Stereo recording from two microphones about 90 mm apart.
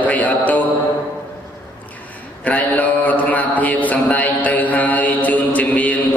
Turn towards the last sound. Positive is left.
turn(degrees=15)  # may be behind; listen again after turning